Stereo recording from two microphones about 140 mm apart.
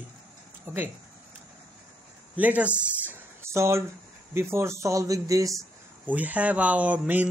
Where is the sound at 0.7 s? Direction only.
15° right (ahead or behind).